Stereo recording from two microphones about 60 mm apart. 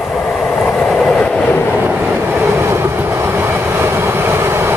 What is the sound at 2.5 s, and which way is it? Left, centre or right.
Train, right.